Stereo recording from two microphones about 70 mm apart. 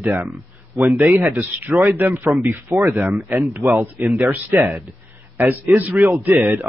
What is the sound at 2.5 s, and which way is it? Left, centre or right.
Speech, right.